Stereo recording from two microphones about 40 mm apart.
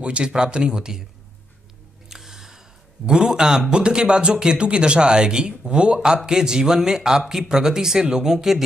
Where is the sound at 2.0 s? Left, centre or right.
Centre.